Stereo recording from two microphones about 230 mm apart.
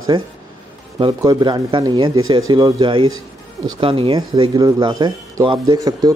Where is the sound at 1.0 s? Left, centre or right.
Centre.